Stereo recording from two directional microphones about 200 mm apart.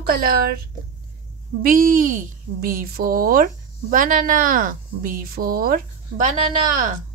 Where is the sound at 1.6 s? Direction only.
45° right (ahead or behind).